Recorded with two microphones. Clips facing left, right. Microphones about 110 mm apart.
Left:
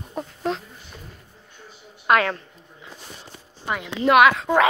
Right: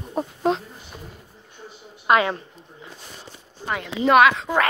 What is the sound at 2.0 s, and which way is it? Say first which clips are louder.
Speech: right 1 dB; 5° right (ahead or behind).